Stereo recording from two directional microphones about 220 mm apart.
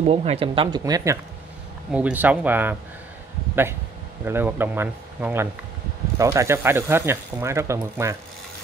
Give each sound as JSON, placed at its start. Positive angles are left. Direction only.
{"t": 0.0, "sound": "speech", "side_deg": -25}
{"t": 4.2, "sound": "speech", "side_deg": -10}